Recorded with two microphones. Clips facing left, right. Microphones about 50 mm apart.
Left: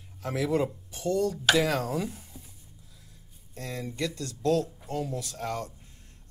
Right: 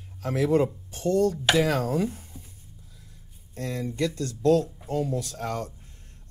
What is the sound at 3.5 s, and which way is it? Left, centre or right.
Speech, right.